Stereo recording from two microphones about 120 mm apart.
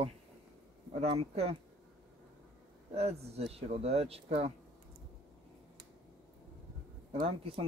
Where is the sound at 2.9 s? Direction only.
60° right (ahead or behind).